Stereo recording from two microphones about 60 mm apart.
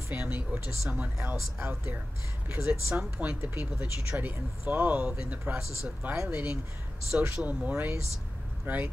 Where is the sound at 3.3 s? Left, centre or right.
Right.